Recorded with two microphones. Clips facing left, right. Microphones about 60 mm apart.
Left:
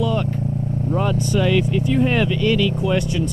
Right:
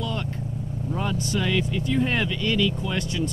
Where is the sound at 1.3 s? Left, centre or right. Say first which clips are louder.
Left 7 dB; centre.